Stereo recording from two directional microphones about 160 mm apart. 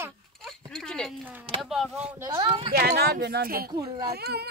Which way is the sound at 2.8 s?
80° right.